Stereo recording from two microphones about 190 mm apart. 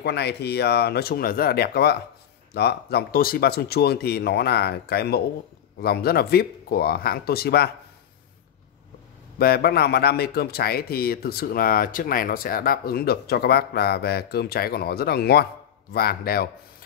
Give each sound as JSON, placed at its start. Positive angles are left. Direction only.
{"t": 0.0, "sound": "a man's voice", "side_deg": 60}
{"t": 9.4, "sound": "a man's voice", "side_deg": 55}